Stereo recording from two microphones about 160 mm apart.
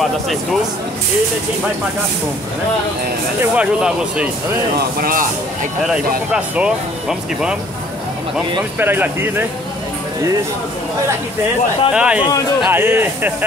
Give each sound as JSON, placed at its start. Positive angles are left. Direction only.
{"t": 0.0, "sound": "speech", "side_deg": 0}
{"t": 3.5, "sound": "speech", "side_deg": -10}
{"t": 4.7, "sound": "speech", "side_deg": -65}
{"t": 6.3, "sound": "speech", "side_deg": -5}
{"t": 8.7, "sound": "speech", "side_deg": -10}
{"t": 11.9, "sound": "speech", "side_deg": -5}